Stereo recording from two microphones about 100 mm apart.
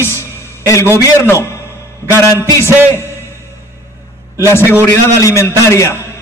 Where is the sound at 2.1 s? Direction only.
30° left (ahead or behind).